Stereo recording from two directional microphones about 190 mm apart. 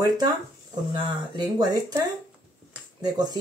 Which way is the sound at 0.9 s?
20° right (ahead or behind).